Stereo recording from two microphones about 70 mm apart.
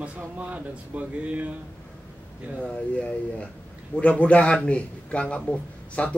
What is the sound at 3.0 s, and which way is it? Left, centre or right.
Speech, centre.